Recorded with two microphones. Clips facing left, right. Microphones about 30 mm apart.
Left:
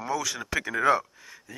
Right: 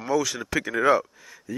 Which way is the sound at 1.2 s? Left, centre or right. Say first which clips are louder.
Right 7 dB; centre.